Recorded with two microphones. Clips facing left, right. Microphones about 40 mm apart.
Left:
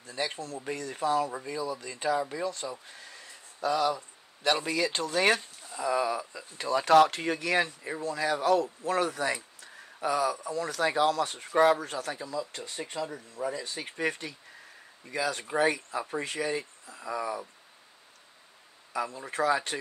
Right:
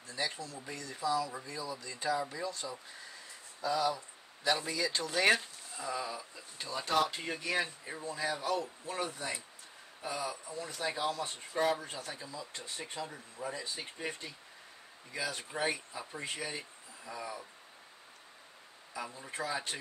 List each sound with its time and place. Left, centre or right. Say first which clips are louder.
0.1 s speech: left 4 dB; left
3.6 s speech: left 5 dB; left
5.9 s speech: left 10 dB; left
18.9 s speech: left 9 dB; left